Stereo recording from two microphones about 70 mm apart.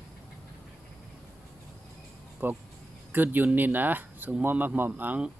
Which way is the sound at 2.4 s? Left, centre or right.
Right.